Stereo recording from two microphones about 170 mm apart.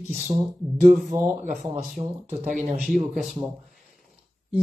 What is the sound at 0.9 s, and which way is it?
Speech, centre (ahead or behind).